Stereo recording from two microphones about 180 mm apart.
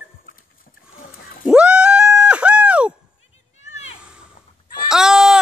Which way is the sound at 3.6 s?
40° left (ahead or behind).